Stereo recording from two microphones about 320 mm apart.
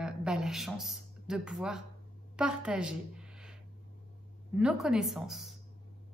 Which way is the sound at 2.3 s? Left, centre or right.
Centre.